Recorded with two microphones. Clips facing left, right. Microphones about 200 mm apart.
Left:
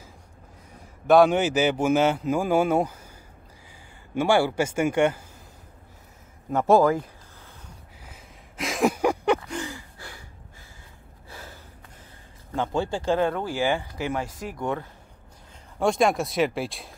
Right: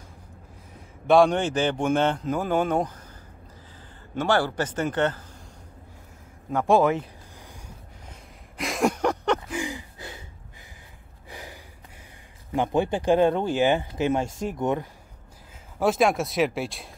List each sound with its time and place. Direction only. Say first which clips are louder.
1.0 s a man's voice: left 1 dB; centre (ahead or behind)
4.1 s a man's voice: left 2 dB; 10° left (ahead or behind)
6.5 s a man's voice: left 2 dB; 5° left (ahead or behind)
8.1 s a sound: right 1 dB; centre (ahead or behind)
9.5 s gasp: right 2 dB; 15° right (ahead or behind)
11.2 s a sound: right 2 dB; 15° right (ahead or behind)
12.5 s speech: right 3 dB; 15° right (ahead or behind)
15.8 s speech: even; centre (ahead or behind)